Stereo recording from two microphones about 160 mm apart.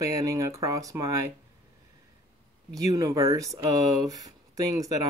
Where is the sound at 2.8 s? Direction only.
20° right (ahead or behind).